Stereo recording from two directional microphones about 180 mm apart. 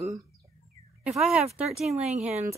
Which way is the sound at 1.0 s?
5° right (ahead or behind).